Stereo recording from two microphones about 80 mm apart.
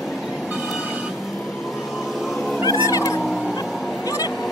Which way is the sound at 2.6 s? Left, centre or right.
Left.